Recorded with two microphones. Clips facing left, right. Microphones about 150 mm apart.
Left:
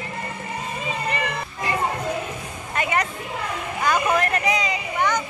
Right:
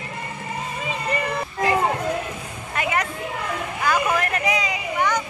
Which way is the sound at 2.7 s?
Centre (ahead or behind).